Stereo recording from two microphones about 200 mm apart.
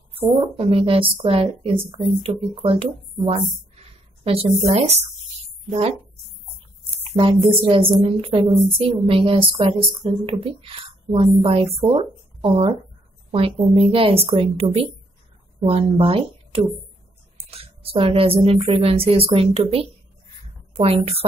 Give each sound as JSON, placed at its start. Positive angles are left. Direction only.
{"t": 0.4, "sound": "a woman's voice", "side_deg": -25}
{"t": 6.9, "sound": "a sound", "side_deg": -25}
{"t": 8.0, "sound": "a woman's voice", "side_deg": -25}
{"t": 16.0, "sound": "a woman's voice", "side_deg": -25}